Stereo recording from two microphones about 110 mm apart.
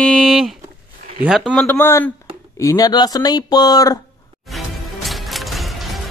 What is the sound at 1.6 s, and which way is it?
Speech, 20° left (ahead or behind).